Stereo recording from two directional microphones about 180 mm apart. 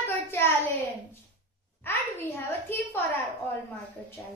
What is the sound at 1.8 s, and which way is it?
A woman's voice, 10° left (ahead or behind).